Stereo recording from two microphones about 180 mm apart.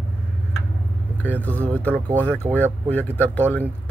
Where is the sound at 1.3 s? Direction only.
10° left (ahead or behind).